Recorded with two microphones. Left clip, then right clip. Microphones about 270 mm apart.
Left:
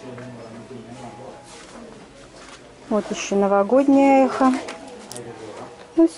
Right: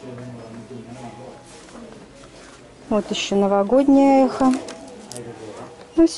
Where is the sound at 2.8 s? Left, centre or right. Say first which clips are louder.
Right 1 dB; centre.